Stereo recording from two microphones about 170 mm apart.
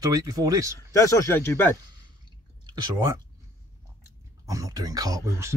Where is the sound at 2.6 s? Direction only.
20° right (ahead or behind).